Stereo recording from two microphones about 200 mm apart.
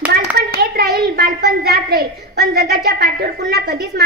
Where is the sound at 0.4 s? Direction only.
50° right (ahead or behind).